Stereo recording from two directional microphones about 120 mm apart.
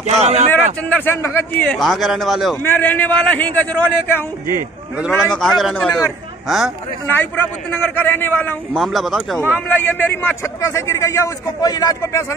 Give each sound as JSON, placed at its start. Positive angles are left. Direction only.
{"t": 0.2, "sound": "speech", "side_deg": -65}
{"t": 0.5, "sound": "speech", "side_deg": 15}
{"t": 1.6, "sound": "a man's voice", "side_deg": 5}
{"t": 2.6, "sound": "a man's voice", "side_deg": 15}
{"t": 5.3, "sound": "a man's voice", "side_deg": 5}
{"t": 7.1, "sound": "a man's voice", "side_deg": 15}
{"t": 8.7, "sound": "a man's voice", "side_deg": 0}
{"t": 9.5, "sound": "a man's voice", "side_deg": 15}